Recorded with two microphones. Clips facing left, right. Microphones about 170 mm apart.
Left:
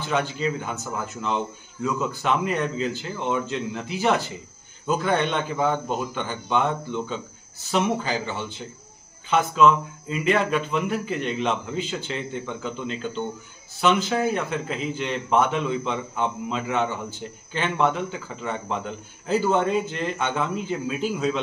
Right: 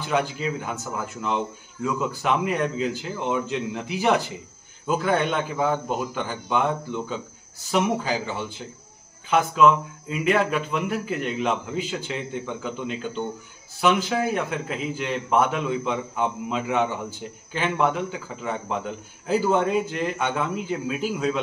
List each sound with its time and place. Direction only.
0.1 s a man's voice: 5° right (ahead or behind)